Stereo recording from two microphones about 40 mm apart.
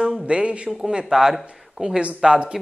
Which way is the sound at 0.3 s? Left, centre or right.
Right.